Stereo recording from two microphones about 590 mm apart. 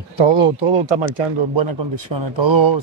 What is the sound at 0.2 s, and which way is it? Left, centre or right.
Speech, right.